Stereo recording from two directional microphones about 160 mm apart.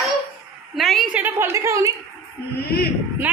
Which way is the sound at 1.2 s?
15° right (ahead or behind).